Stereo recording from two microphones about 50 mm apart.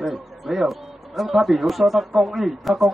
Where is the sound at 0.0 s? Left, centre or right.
Centre.